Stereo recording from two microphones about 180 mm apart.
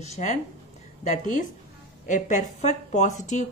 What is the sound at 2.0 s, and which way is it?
A woman's voice, 45° left (ahead or behind).